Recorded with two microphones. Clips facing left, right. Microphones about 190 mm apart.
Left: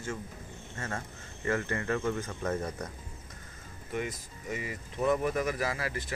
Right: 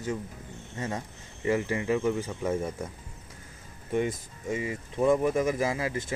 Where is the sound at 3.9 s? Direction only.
25° right (ahead or behind).